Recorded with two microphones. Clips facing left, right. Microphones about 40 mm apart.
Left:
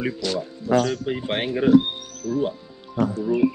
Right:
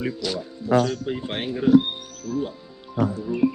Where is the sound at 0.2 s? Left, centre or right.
Centre.